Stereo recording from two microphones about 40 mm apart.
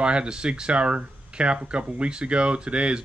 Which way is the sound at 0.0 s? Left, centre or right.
Right.